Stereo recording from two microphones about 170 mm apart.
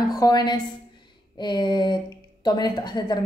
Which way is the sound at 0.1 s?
20° left (ahead or behind).